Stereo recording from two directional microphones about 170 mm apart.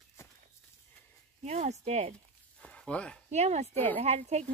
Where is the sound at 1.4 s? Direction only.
40° right (ahead or behind).